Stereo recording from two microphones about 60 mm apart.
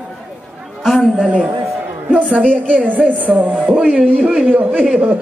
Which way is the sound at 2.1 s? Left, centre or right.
Right.